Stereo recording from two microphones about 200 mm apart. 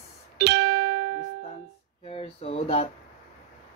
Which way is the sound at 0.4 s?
90° right.